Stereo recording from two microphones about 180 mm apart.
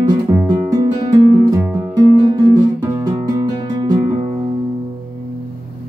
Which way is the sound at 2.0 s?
20° right (ahead or behind).